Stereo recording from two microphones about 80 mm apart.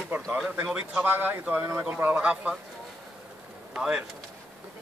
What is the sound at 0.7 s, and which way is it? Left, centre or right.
Speech, centre.